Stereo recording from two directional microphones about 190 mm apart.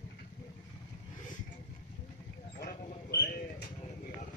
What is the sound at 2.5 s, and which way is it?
Bird, 50° left (ahead or behind).